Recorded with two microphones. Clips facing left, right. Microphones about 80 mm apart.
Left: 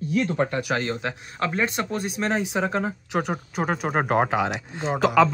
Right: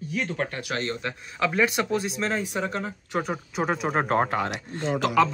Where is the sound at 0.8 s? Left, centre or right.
Left.